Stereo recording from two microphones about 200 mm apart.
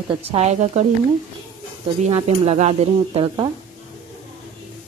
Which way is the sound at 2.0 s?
30° right (ahead or behind).